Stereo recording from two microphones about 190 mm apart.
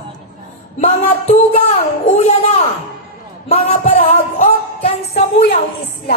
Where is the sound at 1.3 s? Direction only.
35° left (ahead or behind).